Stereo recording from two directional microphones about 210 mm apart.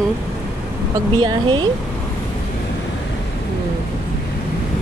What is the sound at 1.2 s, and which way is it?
Speech, 20° right (ahead or behind).